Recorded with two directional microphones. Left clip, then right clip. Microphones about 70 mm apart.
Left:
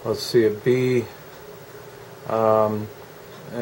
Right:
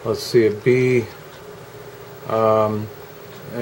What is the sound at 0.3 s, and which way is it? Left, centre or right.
Speech, left.